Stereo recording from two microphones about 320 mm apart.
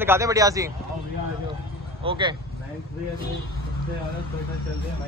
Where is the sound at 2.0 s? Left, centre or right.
Centre.